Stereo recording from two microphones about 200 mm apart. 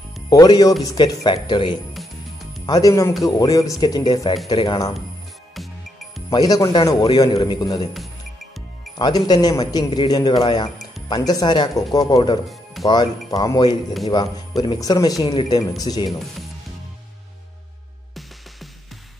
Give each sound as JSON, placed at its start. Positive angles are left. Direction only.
{"t": 0.3, "sound": "speech", "side_deg": 20}
{"t": 6.3, "sound": "speech", "side_deg": 20}
{"t": 8.9, "sound": "speech", "side_deg": 20}